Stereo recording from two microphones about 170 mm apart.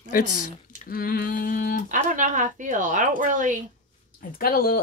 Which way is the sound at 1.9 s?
50° right (ahead or behind).